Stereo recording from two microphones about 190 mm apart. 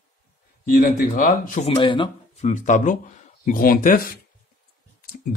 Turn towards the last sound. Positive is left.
turn(degrees=45)  # may be behind; listen again after turning